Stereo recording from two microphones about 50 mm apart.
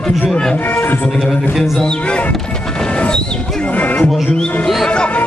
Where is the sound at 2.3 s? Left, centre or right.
Centre.